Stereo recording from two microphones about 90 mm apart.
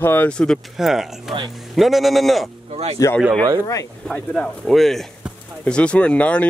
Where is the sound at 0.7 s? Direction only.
5° right (ahead or behind).